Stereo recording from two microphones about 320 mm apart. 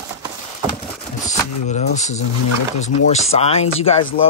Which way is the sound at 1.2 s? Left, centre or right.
Left.